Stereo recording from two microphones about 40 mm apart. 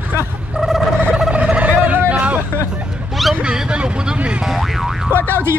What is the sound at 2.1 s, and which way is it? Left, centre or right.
Hubbub, right.